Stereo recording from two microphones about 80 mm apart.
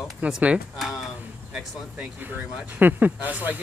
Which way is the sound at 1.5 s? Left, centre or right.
Centre.